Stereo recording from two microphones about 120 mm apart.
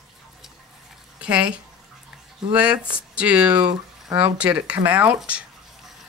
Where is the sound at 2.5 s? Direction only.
10° right (ahead or behind).